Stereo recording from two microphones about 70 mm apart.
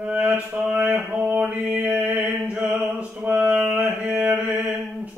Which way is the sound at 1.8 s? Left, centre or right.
Right.